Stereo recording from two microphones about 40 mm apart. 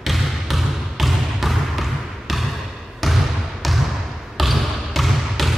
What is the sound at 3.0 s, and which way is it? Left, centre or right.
Basketball bounce, centre.